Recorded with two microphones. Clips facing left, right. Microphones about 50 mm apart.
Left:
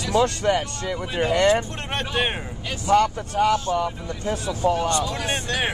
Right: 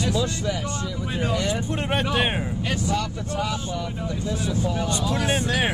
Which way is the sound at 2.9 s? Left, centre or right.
Left.